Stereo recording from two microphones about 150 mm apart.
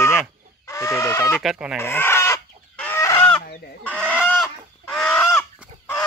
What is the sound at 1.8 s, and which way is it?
Chicken, 15° left (ahead or behind).